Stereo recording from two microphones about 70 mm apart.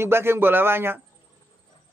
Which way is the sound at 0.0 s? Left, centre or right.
Right.